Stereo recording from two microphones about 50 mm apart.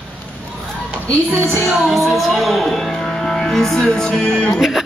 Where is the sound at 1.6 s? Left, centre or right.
Centre.